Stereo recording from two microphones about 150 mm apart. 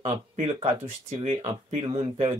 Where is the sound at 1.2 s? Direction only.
50° right (ahead or behind).